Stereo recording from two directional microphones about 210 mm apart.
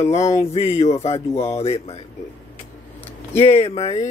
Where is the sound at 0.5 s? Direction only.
30° left (ahead or behind).